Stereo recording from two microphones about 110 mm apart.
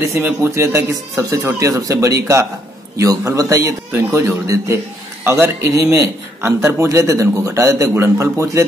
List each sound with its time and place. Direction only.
0.0 s a man's voice: 25° right (ahead or behind)